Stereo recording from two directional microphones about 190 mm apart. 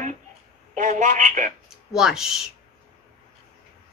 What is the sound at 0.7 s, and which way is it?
Speech, 40° right (ahead or behind).